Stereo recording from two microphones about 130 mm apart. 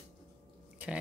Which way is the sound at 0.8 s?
10° right (ahead or behind).